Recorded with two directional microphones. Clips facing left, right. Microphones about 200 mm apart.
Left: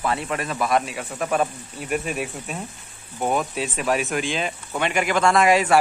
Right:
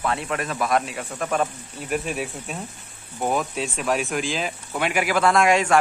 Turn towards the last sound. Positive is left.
turn(degrees=5)  # may be behind; listen again after turning